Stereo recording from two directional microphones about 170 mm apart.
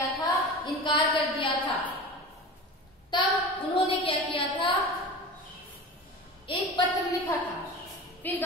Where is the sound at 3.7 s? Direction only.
35° left (ahead or behind).